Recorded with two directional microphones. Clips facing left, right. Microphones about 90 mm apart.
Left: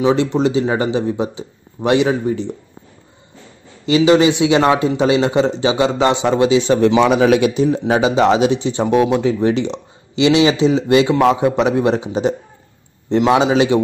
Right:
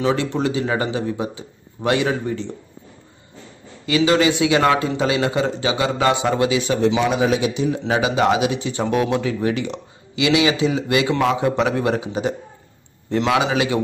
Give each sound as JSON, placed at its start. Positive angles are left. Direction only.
{"t": 0.0, "sound": "speech", "side_deg": 20}
{"t": 3.8, "sound": "speech", "side_deg": 20}
{"t": 6.8, "sound": "speech", "side_deg": 65}
{"t": 7.5, "sound": "speech", "side_deg": 35}